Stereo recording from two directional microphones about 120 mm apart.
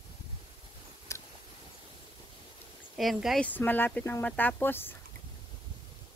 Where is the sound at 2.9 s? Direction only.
Centre (ahead or behind).